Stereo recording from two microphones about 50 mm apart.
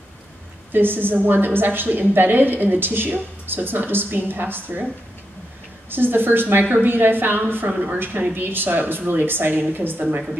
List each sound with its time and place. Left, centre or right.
0.7 s a woman's voice: right
5.9 s a woman's voice: right